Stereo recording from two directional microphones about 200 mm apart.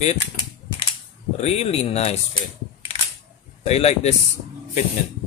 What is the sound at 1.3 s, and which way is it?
Speech, 30° left (ahead or behind).